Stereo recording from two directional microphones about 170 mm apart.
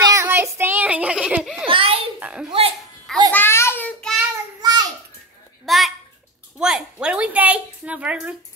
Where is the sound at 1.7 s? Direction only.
35° right (ahead or behind).